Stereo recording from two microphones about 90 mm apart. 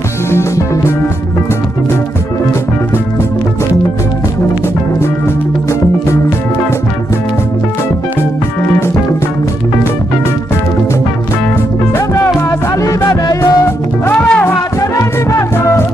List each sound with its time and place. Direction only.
12.4 s music: 35° left (ahead or behind)
14.1 s music: 10° left (ahead or behind)
14.8 s music: 35° left (ahead or behind)